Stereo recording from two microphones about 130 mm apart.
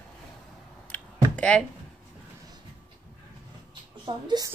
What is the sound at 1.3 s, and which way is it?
Speech, 10° left (ahead or behind).